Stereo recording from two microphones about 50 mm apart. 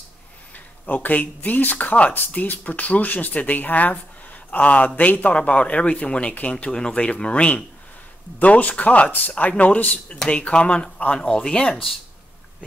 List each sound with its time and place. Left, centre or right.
0.8 s speech: left; by 11.9 s centre